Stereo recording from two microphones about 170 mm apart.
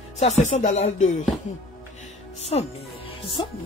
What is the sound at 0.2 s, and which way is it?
Speech, 40° left (ahead or behind).